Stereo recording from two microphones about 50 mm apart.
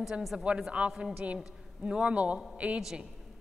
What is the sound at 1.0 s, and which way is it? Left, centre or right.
A woman's voice, right.